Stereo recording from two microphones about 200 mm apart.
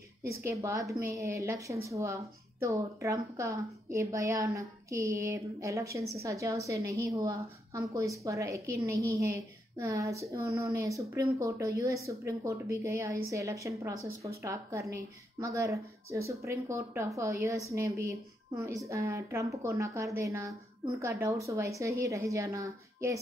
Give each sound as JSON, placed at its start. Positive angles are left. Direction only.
{"t": 0.3, "sound": "speech", "side_deg": -15}